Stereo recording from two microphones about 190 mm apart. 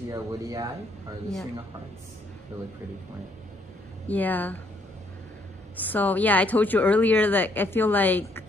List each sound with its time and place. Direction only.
0.1 s speech: 15° right (ahead or behind)
4.1 s speech: 10° left (ahead or behind)
5.8 s speech: 10° left (ahead or behind)